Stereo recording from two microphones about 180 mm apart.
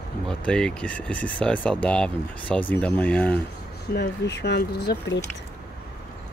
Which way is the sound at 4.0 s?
70° left (ahead or behind).